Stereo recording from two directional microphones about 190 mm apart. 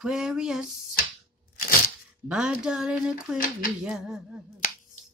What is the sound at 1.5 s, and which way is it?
Crushing, 50° left (ahead or behind).